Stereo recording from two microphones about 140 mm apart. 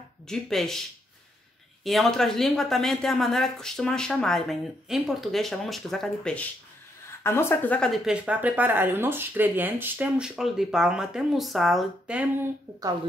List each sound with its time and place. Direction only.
0.3 s speech: centre (ahead or behind)
1.9 s speech: centre (ahead or behind)
7.2 s speech: 15° left (ahead or behind); by 12.3 s 5° right (ahead or behind)